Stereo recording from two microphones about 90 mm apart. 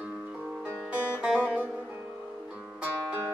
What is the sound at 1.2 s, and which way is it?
Music, 15° right (ahead or behind).